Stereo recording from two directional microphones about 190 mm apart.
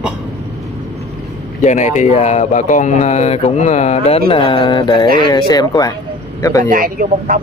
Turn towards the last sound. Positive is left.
turn(degrees=-45)  # may be behind; listen again after turning